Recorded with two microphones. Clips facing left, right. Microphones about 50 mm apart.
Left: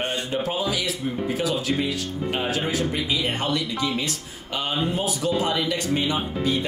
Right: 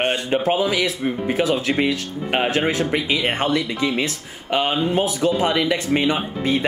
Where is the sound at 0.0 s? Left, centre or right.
Right.